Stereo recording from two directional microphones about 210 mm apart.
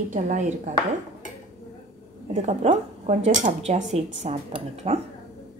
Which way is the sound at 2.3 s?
35° right (ahead or behind).